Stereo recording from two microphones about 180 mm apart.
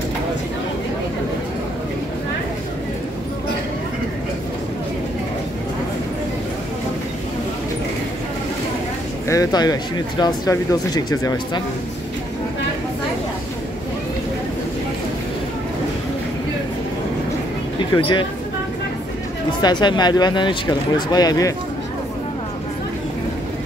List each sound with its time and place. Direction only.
9.3 s speech: 20° left (ahead or behind)
17.7 s speech: 25° left (ahead or behind)
19.6 s speech: 25° left (ahead or behind)